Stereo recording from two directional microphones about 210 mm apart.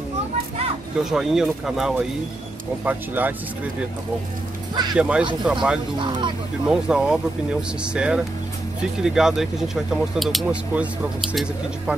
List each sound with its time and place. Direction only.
0.9 s speech: centre (ahead or behind)
4.9 s speech: 5° right (ahead or behind)
5.9 s speech: 20° right (ahead or behind)
6.7 s speech: 5° right (ahead or behind)